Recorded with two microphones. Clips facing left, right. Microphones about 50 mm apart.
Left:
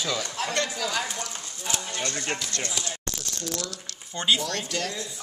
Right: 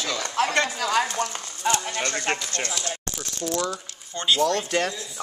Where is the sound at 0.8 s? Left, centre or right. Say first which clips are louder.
Right 6 dB; right.